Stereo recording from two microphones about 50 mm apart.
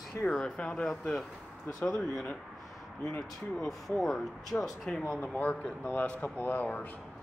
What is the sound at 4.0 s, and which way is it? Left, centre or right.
Speech, centre.